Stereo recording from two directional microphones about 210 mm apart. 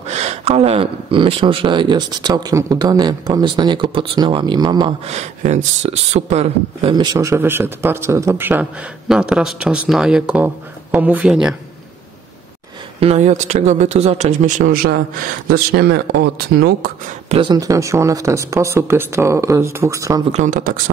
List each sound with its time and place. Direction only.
0.0 s speech: 30° right (ahead or behind); by 11.5 s 5° right (ahead or behind)
13.0 s speech: 30° right (ahead or behind); by 16.9 s 50° right (ahead or behind)
17.3 s speech: 20° right (ahead or behind)
20.2 s speech: 35° right (ahead or behind)